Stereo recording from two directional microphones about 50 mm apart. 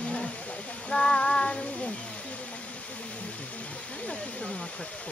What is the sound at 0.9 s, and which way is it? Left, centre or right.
Child singing, centre.